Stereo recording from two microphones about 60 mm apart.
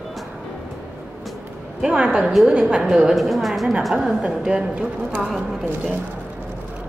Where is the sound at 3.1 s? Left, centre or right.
Centre.